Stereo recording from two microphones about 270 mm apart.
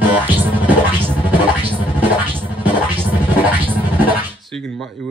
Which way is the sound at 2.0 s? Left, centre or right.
Centre.